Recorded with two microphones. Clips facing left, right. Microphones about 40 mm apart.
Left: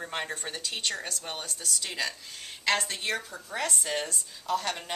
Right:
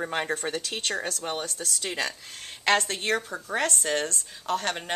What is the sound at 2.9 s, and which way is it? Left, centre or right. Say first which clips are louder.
A woman's voice: right 5 dB; right.